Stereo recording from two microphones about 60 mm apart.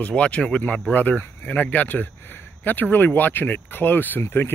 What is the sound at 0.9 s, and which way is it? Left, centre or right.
Speech, left.